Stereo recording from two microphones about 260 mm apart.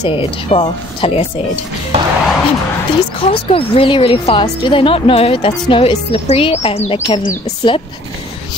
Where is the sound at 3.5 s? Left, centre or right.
Left.